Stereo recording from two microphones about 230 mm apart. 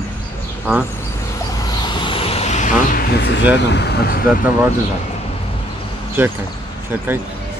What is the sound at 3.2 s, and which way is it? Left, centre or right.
Speech, left.